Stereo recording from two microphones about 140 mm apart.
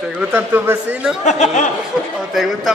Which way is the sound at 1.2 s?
55° left (ahead or behind).